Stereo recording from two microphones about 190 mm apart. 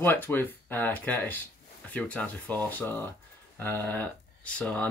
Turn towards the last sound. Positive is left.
turn(degrees=5)  # may be behind; listen again after turning